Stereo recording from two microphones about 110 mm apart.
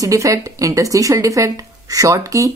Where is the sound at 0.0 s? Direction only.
30° right (ahead or behind).